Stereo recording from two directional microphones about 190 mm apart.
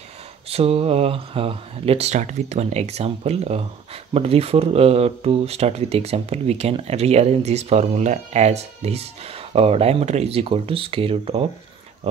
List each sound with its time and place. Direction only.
0.5 s speech: 30° right (ahead or behind)